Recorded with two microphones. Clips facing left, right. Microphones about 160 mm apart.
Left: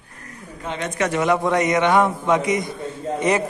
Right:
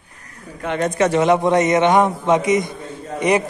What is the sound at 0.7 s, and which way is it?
Speech, 40° right (ahead or behind).